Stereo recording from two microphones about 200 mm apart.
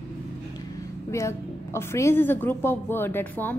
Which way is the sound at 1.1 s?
15° left (ahead or behind).